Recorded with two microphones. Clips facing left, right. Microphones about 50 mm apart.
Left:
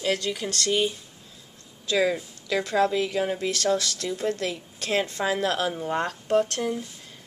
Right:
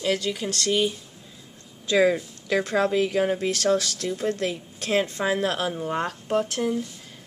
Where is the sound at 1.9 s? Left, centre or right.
Centre.